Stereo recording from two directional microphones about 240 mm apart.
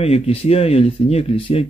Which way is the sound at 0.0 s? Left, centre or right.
Left.